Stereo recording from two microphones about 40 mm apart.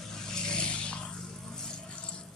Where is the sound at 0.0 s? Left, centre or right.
Centre.